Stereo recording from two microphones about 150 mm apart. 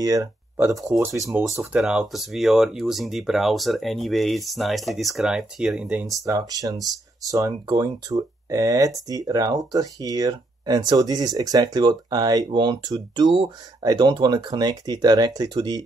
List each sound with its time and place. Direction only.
0.0 s speech: 20° right (ahead or behind)
1.6 s speech: 5° right (ahead or behind)
6.2 s speech: 20° right (ahead or behind)